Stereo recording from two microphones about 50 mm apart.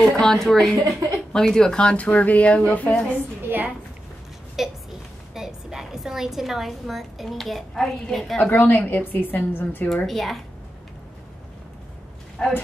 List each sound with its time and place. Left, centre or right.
0.0 s a woman's voice: centre; by 3.0 s left
3.2 s a sound: right
4.6 s a sound: centre
5.3 s a woman's voice: centre
8.5 s a woman's voice: left
10.0 s a woman's voice: centre
12.4 s speech: centre